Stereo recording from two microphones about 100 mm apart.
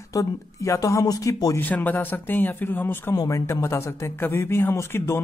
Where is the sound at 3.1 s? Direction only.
35° left (ahead or behind).